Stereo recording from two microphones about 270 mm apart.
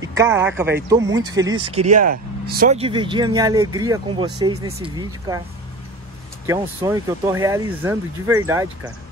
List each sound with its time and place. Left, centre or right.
0.0 s speech: centre
6.4 s speech: centre